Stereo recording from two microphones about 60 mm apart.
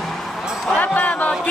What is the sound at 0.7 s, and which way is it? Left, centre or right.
Music, left.